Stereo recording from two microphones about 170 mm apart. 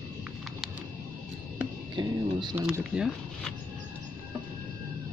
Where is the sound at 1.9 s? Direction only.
25° right (ahead or behind).